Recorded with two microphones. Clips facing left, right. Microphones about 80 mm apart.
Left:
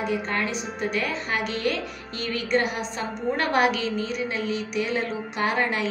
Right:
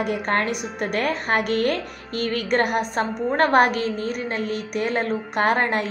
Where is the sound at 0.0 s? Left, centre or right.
Right.